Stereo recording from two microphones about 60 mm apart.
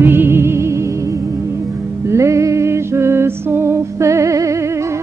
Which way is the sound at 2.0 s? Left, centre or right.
Right.